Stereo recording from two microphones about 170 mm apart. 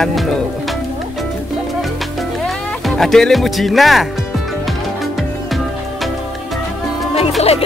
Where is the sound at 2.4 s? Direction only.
Centre (ahead or behind).